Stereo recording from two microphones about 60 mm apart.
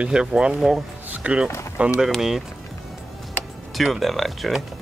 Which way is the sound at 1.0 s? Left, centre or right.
Right.